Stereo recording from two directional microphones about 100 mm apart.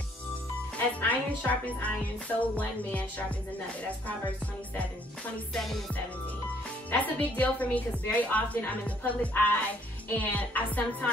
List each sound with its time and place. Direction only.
0.7 s a woman's voice: 15° left (ahead or behind)
5.5 s music: centre (ahead or behind)
6.9 s a woman's voice: 15° left (ahead or behind)